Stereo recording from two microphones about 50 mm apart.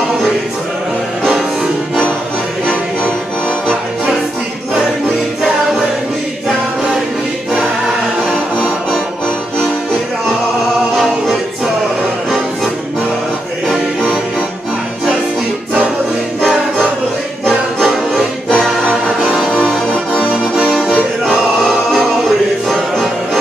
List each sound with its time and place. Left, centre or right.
18.5 s music: left
19.2 s music: centre
21.3 s music: centre